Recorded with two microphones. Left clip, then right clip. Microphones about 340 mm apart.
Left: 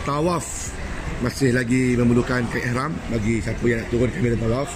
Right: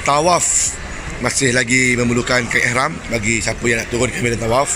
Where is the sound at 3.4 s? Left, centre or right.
Right.